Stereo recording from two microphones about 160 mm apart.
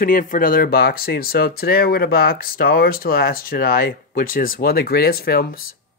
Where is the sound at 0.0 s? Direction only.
55° left (ahead or behind).